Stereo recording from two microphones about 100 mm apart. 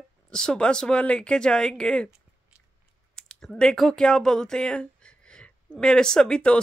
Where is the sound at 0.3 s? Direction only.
5° left (ahead or behind).